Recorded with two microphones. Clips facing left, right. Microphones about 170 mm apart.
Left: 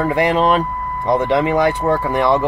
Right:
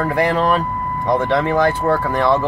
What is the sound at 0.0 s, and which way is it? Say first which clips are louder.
Speech: left 2 dB; 20° left (ahead or behind).